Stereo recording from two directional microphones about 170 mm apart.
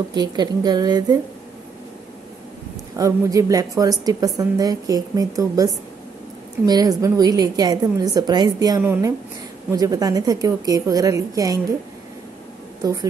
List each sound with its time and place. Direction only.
0.1 s a woman's voice: 25° right (ahead or behind)
3.0 s a woman's voice: 20° right (ahead or behind)